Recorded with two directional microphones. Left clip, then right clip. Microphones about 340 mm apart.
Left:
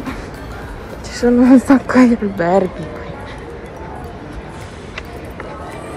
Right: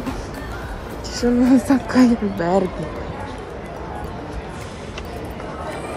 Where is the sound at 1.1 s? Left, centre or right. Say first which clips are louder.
Left 6 dB; centre.